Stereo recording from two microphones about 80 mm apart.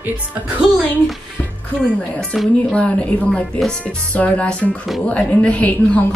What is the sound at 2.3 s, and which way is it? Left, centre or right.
Speech, centre.